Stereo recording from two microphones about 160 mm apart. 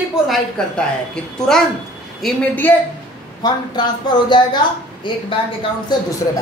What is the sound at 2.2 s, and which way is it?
Speech, 10° left (ahead or behind).